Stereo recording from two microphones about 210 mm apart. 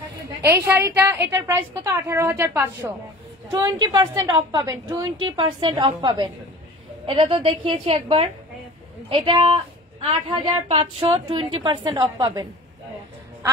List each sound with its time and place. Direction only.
0.4 s a woman's voice: 10° right (ahead or behind)
10.7 s a woman's voice: 30° right (ahead or behind)